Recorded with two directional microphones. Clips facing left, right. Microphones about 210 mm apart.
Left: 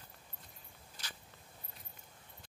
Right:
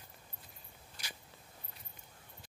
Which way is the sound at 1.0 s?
10° right (ahead or behind).